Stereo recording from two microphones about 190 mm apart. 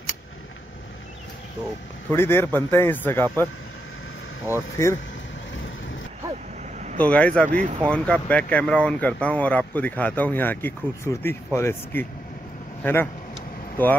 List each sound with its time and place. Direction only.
2.0 s speech: 10° left (ahead or behind)
4.8 s speech: 15° left (ahead or behind)
7.0 s speech: 5° left (ahead or behind)
7.4 s speech: 45° right (ahead or behind)
7.9 s speech: 5° left (ahead or behind)